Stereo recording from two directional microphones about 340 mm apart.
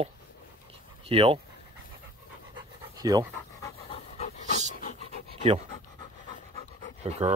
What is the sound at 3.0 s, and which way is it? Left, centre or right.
Speech, centre.